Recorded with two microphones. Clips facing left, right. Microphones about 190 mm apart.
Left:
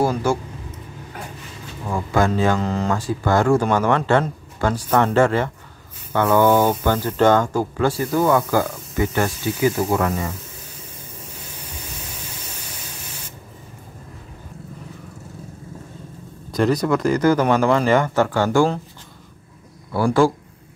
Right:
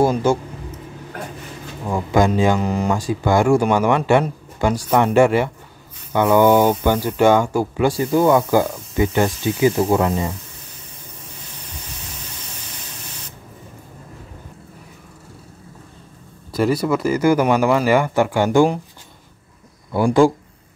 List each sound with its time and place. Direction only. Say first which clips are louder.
0.0 s speech: right 3 dB; 20° right (ahead or behind)
1.9 s speech: right 3 dB; 15° right (ahead or behind)
16.5 s speech: even; 10° right (ahead or behind)
19.9 s speech: right 3 dB; 20° right (ahead or behind)